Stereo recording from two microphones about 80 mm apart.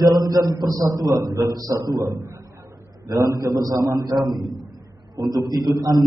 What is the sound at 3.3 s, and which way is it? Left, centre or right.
A man's voice, right.